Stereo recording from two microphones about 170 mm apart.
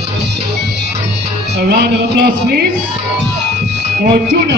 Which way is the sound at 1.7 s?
65° right (ahead or behind).